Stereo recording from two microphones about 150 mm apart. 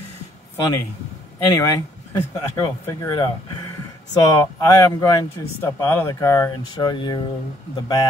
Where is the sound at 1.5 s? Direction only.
20° left (ahead or behind).